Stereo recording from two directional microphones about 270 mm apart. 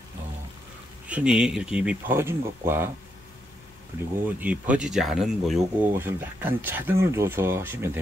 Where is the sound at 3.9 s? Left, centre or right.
Centre.